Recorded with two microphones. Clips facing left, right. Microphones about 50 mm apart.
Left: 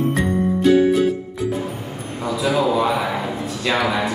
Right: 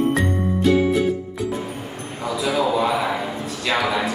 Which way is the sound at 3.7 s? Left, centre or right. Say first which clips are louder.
Left 1 dB; centre.